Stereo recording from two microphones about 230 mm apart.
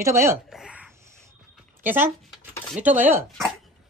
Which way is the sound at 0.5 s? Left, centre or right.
Centre.